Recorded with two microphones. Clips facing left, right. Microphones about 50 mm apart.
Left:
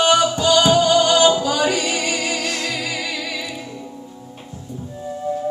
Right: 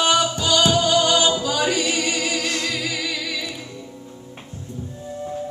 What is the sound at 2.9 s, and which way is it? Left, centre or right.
Music, left.